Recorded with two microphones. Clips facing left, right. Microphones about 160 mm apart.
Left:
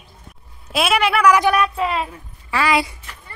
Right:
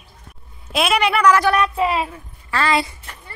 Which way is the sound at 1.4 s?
15° left (ahead or behind).